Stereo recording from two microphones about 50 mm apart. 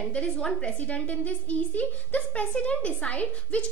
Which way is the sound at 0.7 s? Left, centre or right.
Left.